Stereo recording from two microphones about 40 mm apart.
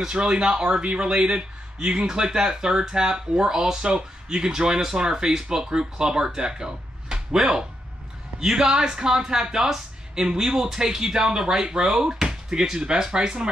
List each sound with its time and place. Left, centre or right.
0.1 s a man's voice: right